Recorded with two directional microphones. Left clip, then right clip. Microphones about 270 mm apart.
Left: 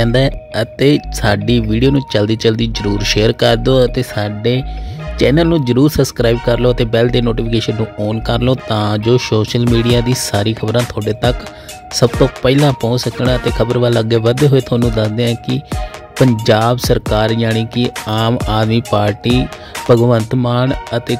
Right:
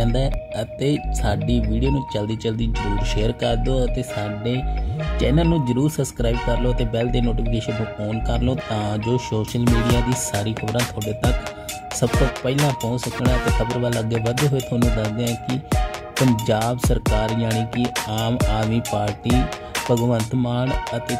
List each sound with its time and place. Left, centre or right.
0.0 s speech: left
12.0 s speech: left